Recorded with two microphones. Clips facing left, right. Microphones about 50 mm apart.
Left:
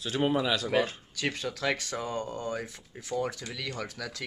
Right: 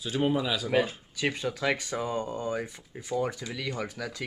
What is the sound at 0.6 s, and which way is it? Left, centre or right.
Speech, centre.